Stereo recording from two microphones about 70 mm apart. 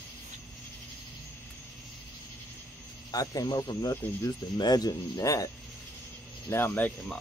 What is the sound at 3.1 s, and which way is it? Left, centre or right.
Speech, left.